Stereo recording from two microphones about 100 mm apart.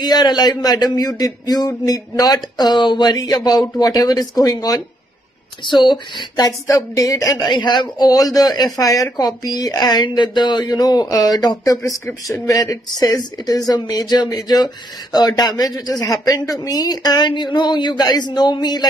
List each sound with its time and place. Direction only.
0.0 s speech: 45° left (ahead or behind)
12.9 s speech: 45° left (ahead or behind)